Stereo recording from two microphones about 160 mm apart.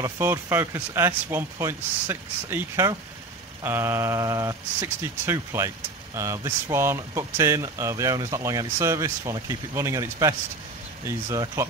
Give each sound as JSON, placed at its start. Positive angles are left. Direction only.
{"t": 0.0, "sound": "speech", "side_deg": -15}